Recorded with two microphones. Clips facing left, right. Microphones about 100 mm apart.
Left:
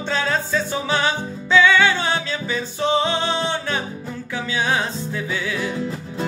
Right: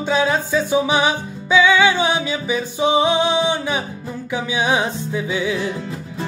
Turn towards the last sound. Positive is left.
turn(degrees=-15)  # may be behind; listen again after turning